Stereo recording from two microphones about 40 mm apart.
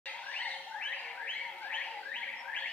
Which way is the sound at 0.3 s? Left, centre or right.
Left.